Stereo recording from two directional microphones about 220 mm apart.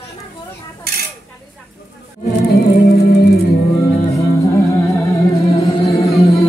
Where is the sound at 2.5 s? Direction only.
45° left (ahead or behind).